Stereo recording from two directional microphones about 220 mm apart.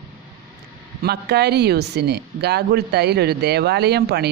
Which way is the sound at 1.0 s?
45° right (ahead or behind).